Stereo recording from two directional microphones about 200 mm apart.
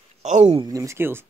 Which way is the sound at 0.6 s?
15° right (ahead or behind).